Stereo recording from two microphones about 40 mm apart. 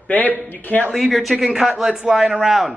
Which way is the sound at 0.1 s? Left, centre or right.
Left.